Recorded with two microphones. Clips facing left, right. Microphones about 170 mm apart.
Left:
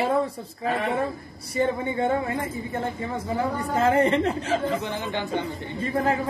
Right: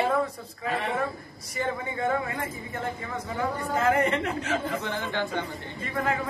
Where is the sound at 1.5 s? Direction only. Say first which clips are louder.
Left 6 dB; 30° left (ahead or behind).